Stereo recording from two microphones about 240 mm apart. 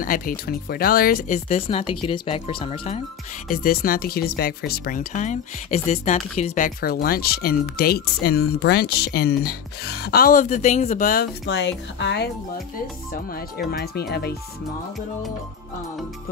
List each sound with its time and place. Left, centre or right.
0.0 s speech: left
3.4 s speech: left
11.4 s speech: left